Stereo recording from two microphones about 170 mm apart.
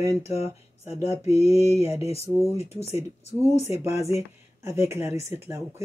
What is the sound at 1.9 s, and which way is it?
Speech, 20° right (ahead or behind).